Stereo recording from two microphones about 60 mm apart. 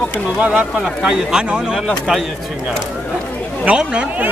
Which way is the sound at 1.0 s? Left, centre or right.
Centre.